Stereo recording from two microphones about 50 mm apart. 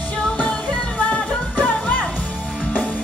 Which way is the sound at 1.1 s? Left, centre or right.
Left.